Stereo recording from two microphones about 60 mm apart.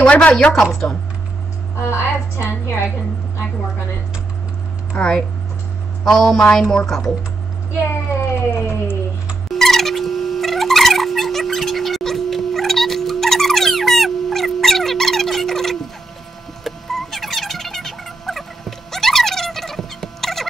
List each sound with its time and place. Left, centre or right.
0.0 s a woman's voice: centre
1.8 s a woman's voice: left
4.9 s a woman's voice: centre
8.5 s a sound: left
9.5 s a sound: centre
16.6 s fowl: centre